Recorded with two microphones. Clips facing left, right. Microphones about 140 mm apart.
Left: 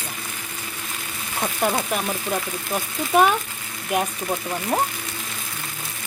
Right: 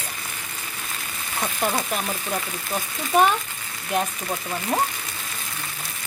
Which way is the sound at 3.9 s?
5° left (ahead or behind).